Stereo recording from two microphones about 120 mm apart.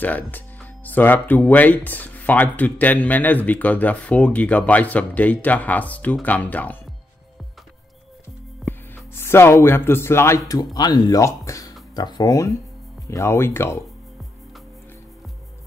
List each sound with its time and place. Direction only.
0.0 s speech: 15° left (ahead or behind)
8.6 s speech: 20° left (ahead or behind)